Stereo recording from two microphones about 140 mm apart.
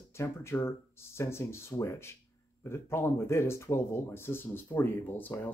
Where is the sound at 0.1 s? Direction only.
20° left (ahead or behind).